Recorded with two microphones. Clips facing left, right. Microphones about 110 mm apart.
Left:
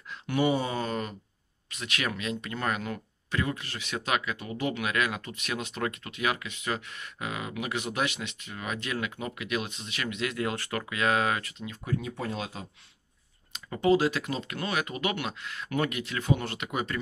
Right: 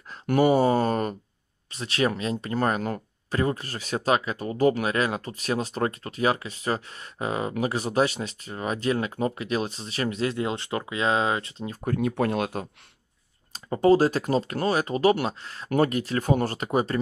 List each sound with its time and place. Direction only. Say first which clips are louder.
0.1 s a sound: right 6 dB; 45° right (ahead or behind)
1.7 s speech: right 8 dB; 35° right (ahead or behind)
11.8 s speech: right 8 dB; 55° right (ahead or behind)
13.5 s speech: right 5 dB; 40° right (ahead or behind)